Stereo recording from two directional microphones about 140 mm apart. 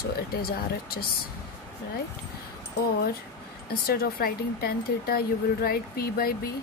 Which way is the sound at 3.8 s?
90° left.